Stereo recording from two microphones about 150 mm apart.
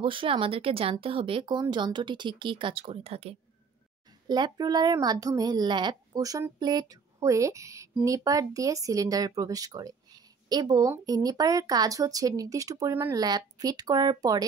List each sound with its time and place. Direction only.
0.0 s speech: 35° right (ahead or behind)
4.3 s a child's voice: 30° right (ahead or behind)